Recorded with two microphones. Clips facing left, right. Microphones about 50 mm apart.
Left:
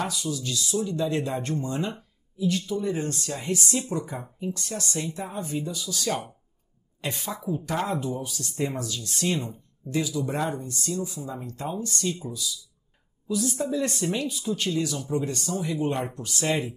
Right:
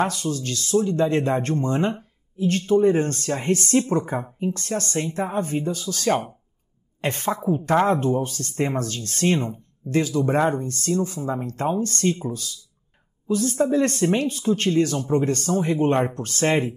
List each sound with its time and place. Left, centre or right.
0.0 s speech: right